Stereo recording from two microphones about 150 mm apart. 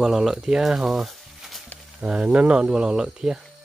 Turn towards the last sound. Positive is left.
turn(degrees=-5)  # may be behind; listen again after turning